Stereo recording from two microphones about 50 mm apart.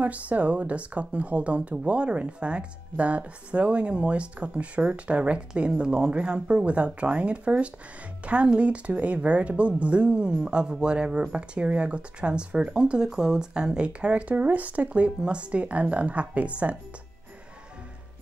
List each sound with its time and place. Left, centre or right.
0.0 s a woman's voice: right